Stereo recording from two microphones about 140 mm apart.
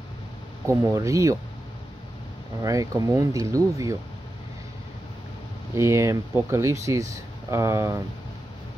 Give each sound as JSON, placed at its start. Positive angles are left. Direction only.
{"t": 0.7, "sound": "speech", "side_deg": -20}
{"t": 2.6, "sound": "speech", "side_deg": -25}
{"t": 5.8, "sound": "speech", "side_deg": -20}